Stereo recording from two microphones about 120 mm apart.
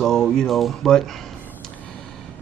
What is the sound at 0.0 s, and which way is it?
Speech, 5° left (ahead or behind).